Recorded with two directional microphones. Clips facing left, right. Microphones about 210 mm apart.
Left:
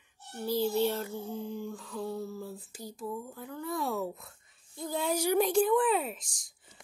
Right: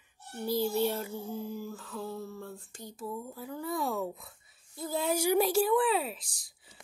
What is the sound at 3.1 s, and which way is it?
Speech, 10° right (ahead or behind).